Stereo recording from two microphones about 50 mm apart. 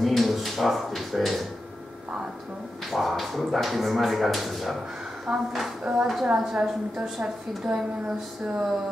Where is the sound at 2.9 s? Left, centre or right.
Centre.